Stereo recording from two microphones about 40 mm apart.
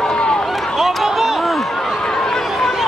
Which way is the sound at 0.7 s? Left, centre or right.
Centre.